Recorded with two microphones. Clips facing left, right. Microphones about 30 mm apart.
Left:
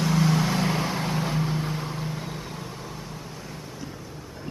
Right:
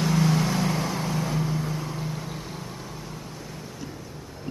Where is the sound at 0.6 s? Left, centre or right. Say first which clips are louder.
Left 1 dB; left.